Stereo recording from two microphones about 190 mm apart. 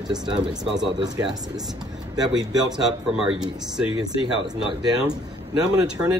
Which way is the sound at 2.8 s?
5° right (ahead or behind).